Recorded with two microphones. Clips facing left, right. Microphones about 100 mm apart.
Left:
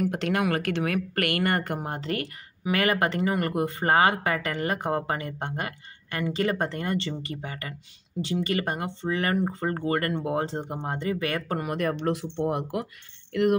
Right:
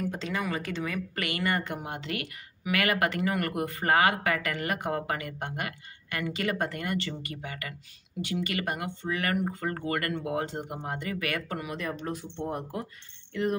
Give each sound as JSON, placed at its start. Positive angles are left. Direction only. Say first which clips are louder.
{"t": 0.0, "sound": "speech", "louder": "left 6 dB", "side_deg": 70}
{"t": 13.3, "sound": "speech", "louder": "left 6 dB", "side_deg": 70}